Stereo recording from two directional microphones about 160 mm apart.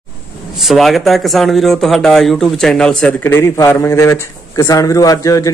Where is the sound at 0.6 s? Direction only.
Centre (ahead or behind).